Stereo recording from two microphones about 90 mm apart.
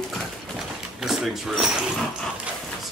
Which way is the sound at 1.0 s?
Centre (ahead or behind).